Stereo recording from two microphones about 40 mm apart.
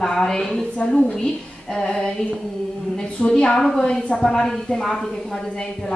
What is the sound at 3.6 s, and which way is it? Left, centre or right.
Speech, centre.